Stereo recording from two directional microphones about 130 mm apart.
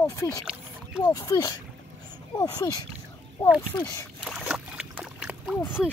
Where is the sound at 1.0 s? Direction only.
30° left (ahead or behind).